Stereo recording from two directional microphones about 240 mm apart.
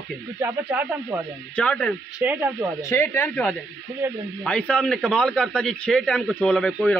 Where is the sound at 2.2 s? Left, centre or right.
Centre.